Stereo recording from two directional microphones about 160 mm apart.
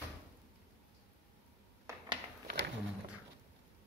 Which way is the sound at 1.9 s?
20° right (ahead or behind).